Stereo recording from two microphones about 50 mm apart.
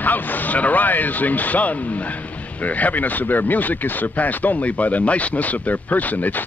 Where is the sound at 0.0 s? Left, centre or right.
Left.